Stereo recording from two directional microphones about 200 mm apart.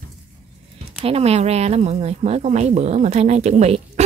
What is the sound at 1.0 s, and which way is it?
Speech, 30° right (ahead or behind).